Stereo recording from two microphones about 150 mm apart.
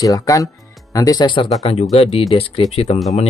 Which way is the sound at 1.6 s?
45° left (ahead or behind).